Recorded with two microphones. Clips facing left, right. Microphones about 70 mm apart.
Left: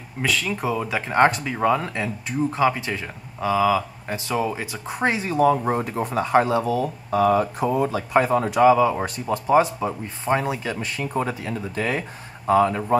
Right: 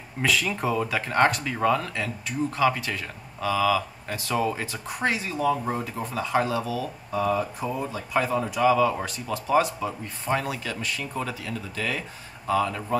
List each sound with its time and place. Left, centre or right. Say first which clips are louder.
0.2 s speech: left 1 dB; centre
0.8 s speech: left 5 dB; centre
4.8 s speech: left 4 dB; left
7.1 s speech: left 6 dB; left
8.2 s speech: left 5 dB; left
8.6 s speech: left 3 dB; centre